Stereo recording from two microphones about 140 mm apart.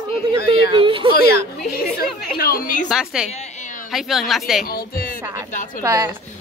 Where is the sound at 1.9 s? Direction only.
90° left.